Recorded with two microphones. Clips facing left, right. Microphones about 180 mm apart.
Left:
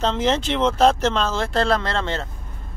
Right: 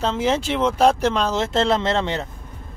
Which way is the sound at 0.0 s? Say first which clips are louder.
Even; 10° right (ahead or behind).